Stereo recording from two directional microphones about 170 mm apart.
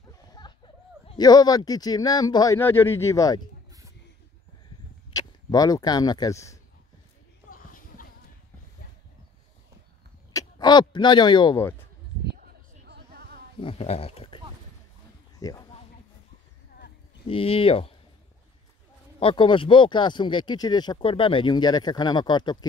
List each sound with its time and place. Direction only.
0.4 s a sound: 25° left (ahead or behind)
1.0 s speech: 25° left (ahead or behind)
5.1 s speech: 20° left (ahead or behind)
10.3 s speech: 25° left (ahead or behind)
12.3 s a sound: 75° right (ahead or behind)
13.6 s speech: 35° left (ahead or behind)
15.3 s a sound: 20° left (ahead or behind)
17.3 s speech: 30° left (ahead or behind)
19.1 s speech: 30° left (ahead or behind)